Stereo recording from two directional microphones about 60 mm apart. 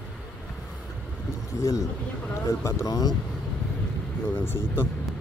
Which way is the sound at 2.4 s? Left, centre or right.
Left.